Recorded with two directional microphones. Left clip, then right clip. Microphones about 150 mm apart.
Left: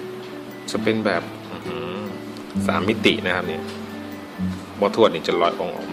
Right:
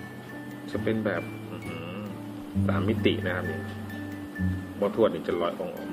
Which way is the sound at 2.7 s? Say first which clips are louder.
Left 8 dB; 40° left (ahead or behind).